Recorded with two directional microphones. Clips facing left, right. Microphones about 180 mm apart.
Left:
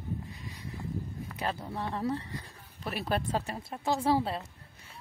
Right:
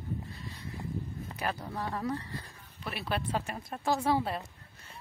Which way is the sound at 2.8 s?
40° left (ahead or behind).